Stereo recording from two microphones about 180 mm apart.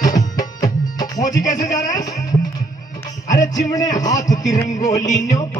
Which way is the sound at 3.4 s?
20° left (ahead or behind).